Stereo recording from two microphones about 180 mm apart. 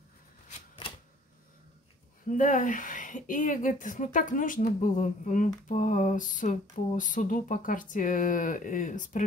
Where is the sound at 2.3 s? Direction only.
45° left (ahead or behind).